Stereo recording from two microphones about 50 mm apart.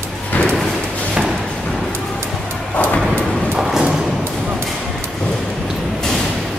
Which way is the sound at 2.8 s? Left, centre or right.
Left.